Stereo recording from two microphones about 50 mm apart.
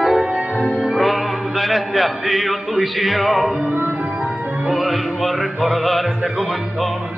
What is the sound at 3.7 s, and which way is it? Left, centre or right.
Music, right.